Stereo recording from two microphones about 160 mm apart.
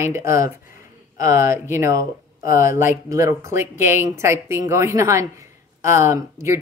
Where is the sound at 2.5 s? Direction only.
55° left (ahead or behind).